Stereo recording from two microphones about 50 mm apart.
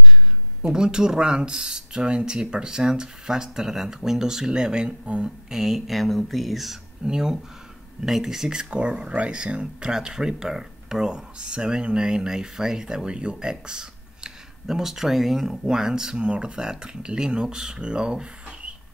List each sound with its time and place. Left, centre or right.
0.6 s speech: centre
5.5 s speech: centre
7.1 s speech: centre
8.6 s speech: right